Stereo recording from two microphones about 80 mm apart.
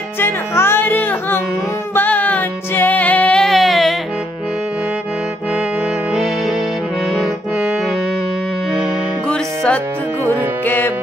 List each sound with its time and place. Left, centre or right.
0.2 s music: left
3.4 s a sound: centre
6.1 s music: centre
9.3 s music: centre
10.6 s music: left